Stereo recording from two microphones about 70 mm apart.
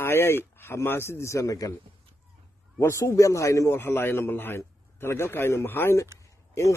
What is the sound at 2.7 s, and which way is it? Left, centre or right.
Speech, left.